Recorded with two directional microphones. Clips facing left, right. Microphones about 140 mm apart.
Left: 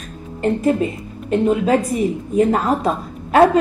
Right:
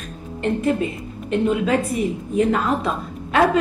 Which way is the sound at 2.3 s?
40° left (ahead or behind).